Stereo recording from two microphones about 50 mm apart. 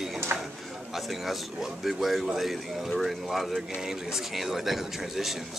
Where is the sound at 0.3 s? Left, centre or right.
Right.